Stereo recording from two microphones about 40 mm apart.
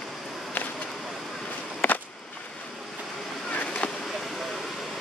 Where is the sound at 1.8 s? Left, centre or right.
Left.